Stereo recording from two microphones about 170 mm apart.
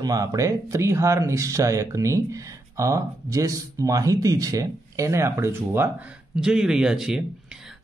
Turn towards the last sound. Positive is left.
turn(degrees=-5)  # may be behind; listen again after turning